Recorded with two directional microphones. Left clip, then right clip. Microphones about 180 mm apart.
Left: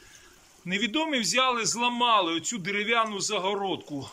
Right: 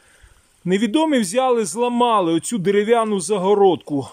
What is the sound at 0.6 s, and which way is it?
A man's voice, 55° right (ahead or behind).